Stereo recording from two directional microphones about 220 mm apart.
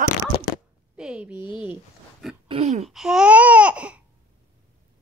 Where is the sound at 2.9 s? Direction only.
Centre (ahead or behind).